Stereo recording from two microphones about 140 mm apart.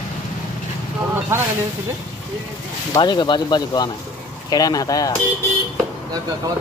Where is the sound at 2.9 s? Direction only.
30° left (ahead or behind).